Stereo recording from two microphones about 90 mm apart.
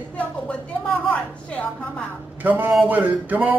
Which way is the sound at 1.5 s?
15° left (ahead or behind).